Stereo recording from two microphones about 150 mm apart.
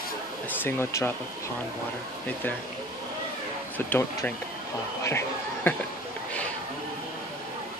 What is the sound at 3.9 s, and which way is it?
Speech, 10° left (ahead or behind).